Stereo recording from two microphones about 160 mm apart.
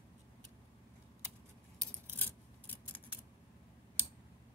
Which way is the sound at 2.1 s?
10° left (ahead or behind).